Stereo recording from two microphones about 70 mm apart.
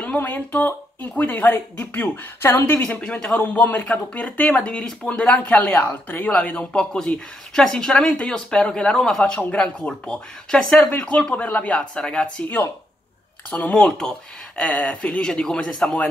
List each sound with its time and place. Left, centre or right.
0.0 s speech: left
2.8 s speech: centre
4.5 s speech: centre
13.5 s speech: centre